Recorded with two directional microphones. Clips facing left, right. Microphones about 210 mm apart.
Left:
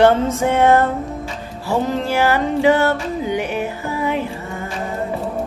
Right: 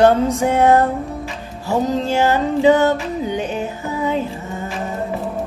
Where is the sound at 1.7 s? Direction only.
15° right (ahead or behind).